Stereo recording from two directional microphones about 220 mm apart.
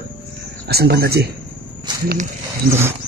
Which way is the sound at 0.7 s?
45° right (ahead or behind).